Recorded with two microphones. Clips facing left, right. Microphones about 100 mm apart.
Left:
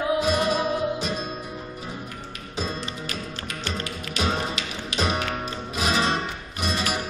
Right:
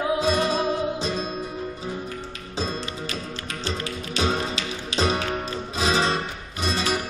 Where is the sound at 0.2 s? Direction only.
30° right (ahead or behind).